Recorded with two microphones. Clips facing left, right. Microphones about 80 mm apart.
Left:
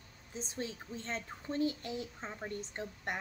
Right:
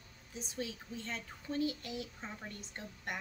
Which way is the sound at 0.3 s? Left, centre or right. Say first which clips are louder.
Left 1 dB; left.